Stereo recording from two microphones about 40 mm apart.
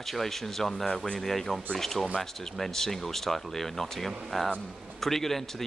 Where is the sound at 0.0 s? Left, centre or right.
Centre.